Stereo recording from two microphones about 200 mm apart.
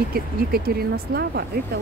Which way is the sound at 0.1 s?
50° right (ahead or behind).